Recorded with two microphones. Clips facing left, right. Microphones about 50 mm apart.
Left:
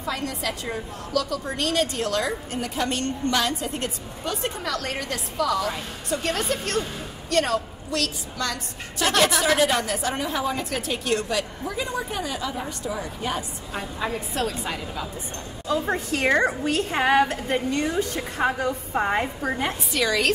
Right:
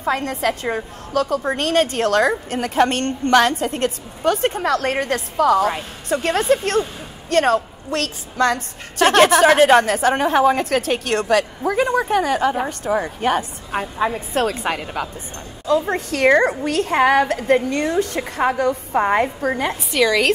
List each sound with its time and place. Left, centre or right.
0.0 s a woman's voice: right
18.9 s a woman's voice: right
19.4 s a woman's voice: right